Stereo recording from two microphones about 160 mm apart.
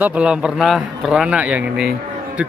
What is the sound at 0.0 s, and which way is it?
Speech, 5° right (ahead or behind).